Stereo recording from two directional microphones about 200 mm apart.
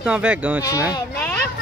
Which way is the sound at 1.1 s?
10° left (ahead or behind).